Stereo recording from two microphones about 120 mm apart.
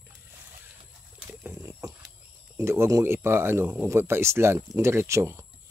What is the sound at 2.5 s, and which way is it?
Speech, 25° right (ahead or behind).